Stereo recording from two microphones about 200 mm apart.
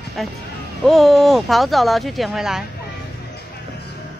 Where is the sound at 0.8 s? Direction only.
Centre (ahead or behind).